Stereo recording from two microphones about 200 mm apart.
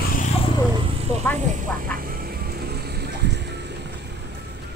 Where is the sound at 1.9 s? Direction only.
45° right (ahead or behind).